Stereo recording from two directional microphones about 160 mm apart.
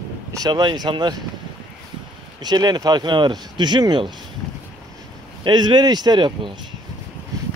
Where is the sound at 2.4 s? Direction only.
25° right (ahead or behind).